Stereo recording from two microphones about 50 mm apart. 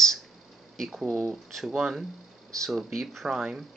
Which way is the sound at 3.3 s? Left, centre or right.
Centre.